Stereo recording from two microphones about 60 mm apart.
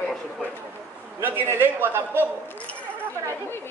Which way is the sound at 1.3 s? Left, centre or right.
Right.